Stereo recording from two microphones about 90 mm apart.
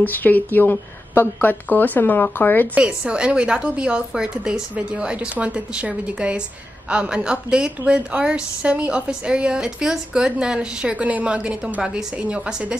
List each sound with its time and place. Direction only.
0.0 s speech: 20° left (ahead or behind)
2.7 s a woman's voice: 10° right (ahead or behind)